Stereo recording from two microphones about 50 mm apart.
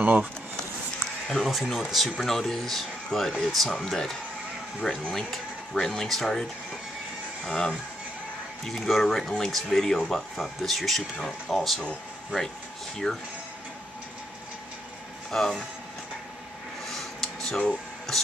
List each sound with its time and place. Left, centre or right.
0.0 s speech: right
1.2 s speech: centre
7.4 s speech: centre
13.0 s speech: centre
15.3 s speech: centre
16.8 s a sound: centre
18.1 s speech: centre